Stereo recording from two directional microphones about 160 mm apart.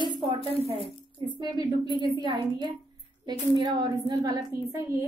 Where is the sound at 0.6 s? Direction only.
35° right (ahead or behind).